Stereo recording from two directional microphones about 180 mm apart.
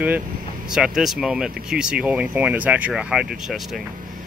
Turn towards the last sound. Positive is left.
turn(degrees=-5)  # may be behind; listen again after turning